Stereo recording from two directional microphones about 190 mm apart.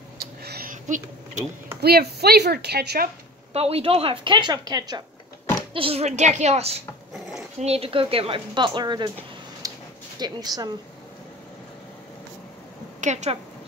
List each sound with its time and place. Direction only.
0.2 s a sound: 55° right (ahead or behind)
1.8 s speech: 55° right (ahead or behind)
3.5 s a woman's voice: 30° right (ahead or behind)
9.6 s a sound: 20° right (ahead or behind)
10.1 s a woman's voice: 20° right (ahead or behind)
13.0 s a child's voice: 35° right (ahead or behind)